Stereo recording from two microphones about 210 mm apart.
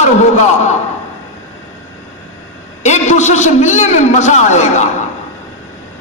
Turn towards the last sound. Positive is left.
turn(degrees=35)  # may be behind; listen again after turning